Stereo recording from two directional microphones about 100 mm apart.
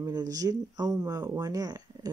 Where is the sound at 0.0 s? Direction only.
40° right (ahead or behind).